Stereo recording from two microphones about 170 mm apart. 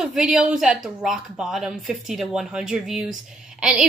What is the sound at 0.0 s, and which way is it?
A woman's voice, centre (ahead or behind).